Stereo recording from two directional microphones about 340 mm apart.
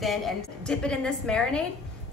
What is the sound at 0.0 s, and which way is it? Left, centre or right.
A woman's voice, centre.